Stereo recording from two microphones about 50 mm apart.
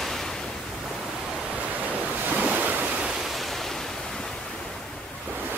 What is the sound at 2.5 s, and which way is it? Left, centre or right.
Waves, right.